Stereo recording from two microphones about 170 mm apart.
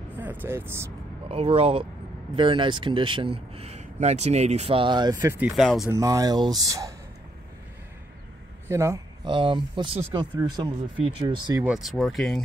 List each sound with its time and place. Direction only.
0.2 s speech: 10° right (ahead or behind)
1.3 s speech: 35° right (ahead or behind)
5.2 s speech: 15° right (ahead or behind)
5.6 s speech: centre (ahead or behind)
5.9 s speech: 20° right (ahead or behind)
8.6 s a sound: 15° right (ahead or behind)
9.3 s speech: 30° right (ahead or behind)
11.6 s speech: 5° right (ahead or behind)